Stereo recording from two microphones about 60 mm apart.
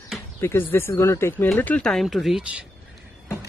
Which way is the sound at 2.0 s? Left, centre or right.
Centre.